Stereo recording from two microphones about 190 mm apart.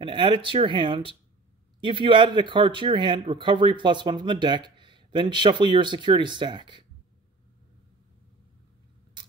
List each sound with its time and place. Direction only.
0.0 s speech: 25° right (ahead or behind)